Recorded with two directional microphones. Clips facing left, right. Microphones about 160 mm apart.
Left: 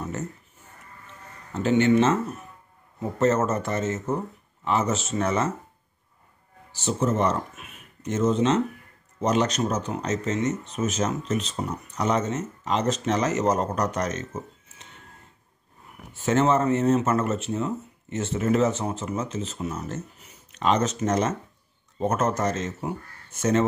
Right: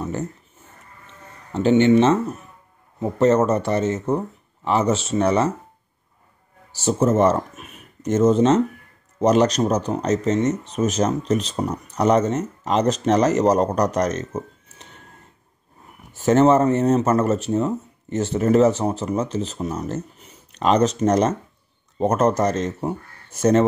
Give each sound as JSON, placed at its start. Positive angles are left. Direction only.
{"t": 0.0, "sound": "a sound", "side_deg": -35}
{"t": 1.5, "sound": "speech", "side_deg": -30}
{"t": 6.7, "sound": "speech", "side_deg": -40}
{"t": 16.2, "sound": "speech", "side_deg": -40}